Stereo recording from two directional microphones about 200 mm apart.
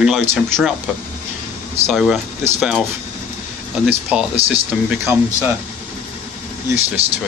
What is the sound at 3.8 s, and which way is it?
Speech, 5° right (ahead or behind).